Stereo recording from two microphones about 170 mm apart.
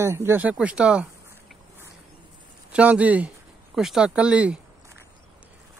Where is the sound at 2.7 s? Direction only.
10° right (ahead or behind).